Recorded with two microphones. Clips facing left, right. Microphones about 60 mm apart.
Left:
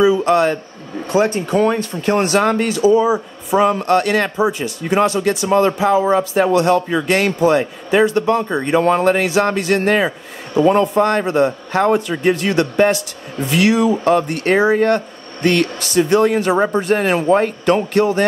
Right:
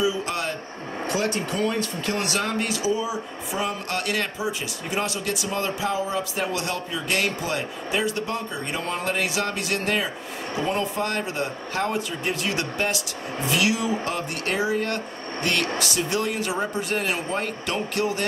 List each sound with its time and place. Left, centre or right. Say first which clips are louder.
0.0 s a man's voice: left 12 dB; left
1.1 s a man's voice: left 11 dB; left
16.8 s speech: left 11 dB; left